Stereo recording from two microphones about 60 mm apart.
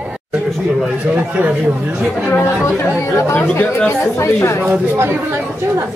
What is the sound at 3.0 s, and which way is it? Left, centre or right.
Speech, left.